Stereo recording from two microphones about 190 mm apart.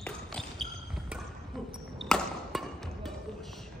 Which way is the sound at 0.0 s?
5° left (ahead or behind).